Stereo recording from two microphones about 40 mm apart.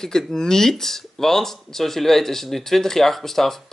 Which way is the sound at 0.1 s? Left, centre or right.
Centre.